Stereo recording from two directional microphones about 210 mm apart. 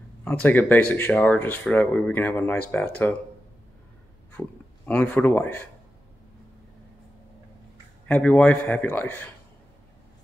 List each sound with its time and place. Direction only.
0.2 s speech: 10° left (ahead or behind)
4.3 s speech: 10° left (ahead or behind)
8.1 s speech: 5° left (ahead or behind)